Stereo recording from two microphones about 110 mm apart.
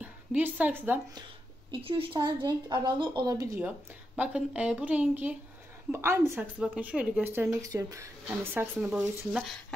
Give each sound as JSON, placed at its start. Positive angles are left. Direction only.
{"t": 0.0, "sound": "a woman's voice", "side_deg": -15}
{"t": 1.7, "sound": "speech", "side_deg": -55}
{"t": 2.1, "sound": "speech", "side_deg": -40}
{"t": 3.2, "sound": "speech", "side_deg": -35}
{"t": 4.2, "sound": "a woman's voice", "side_deg": -10}
{"t": 6.6, "sound": "a woman's voice", "side_deg": -10}
{"t": 7.7, "sound": "a woman's voice", "side_deg": -30}
{"t": 8.8, "sound": "speech", "side_deg": -5}